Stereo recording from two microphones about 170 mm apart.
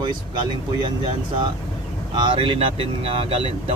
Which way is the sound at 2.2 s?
30° right (ahead or behind).